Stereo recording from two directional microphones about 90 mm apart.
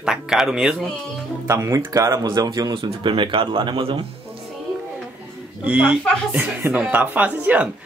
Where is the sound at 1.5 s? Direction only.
35° right (ahead or behind).